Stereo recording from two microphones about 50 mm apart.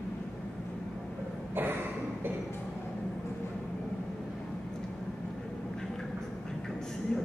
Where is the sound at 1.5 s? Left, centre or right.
Right.